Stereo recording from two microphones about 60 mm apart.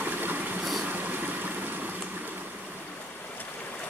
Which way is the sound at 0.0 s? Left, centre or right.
Right.